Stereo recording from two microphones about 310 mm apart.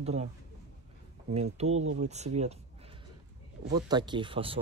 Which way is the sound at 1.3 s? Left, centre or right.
Centre.